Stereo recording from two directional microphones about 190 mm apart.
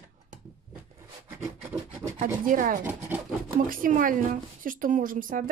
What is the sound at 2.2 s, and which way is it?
A woman's voice, 45° right (ahead or behind).